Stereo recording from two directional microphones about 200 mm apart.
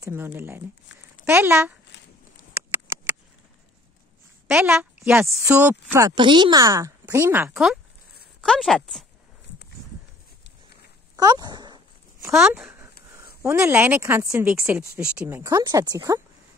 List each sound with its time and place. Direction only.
0.0 s a woman's voice: 10° right (ahead or behind)
4.5 s a woman's voice: 5° right (ahead or behind)
7.5 s speech: centre (ahead or behind)
11.1 s speech: 20° right (ahead or behind)
12.3 s a woman's voice: 5° right (ahead or behind); by 16.2 s 20° right (ahead or behind)